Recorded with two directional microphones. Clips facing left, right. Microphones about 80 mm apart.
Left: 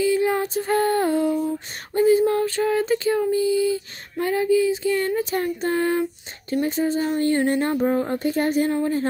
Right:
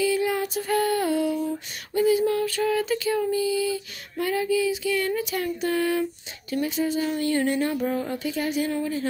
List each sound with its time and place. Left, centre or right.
0.0 s music: left
2.0 s female singing: left
6.6 s speech: left